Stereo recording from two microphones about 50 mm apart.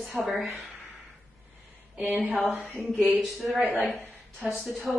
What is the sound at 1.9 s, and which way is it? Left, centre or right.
Speech, right.